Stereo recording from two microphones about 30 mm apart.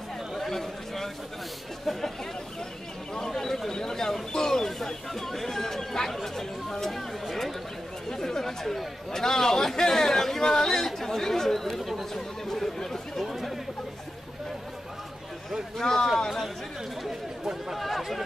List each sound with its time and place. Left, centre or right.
0.4 s chatter: centre
1.9 s speech: centre
3.2 s speech: centre
8.1 s speech: centre
10.4 s speech: left
10.7 s speech: centre
13.2 s chatter: centre
15.8 s speech: centre
17.1 s speech: centre
17.9 s speech: centre